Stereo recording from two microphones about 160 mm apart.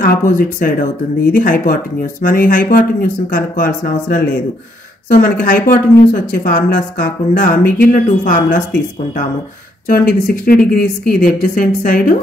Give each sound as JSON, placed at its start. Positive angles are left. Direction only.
{"t": 0.0, "sound": "speech", "side_deg": 65}
{"t": 9.8, "sound": "speech", "side_deg": 65}